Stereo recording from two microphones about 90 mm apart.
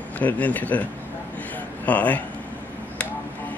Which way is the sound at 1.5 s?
15° left (ahead or behind).